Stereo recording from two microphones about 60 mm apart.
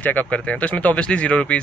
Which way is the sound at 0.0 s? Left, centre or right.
Left.